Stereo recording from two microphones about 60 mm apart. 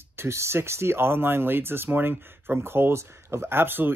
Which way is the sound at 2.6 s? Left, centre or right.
Right.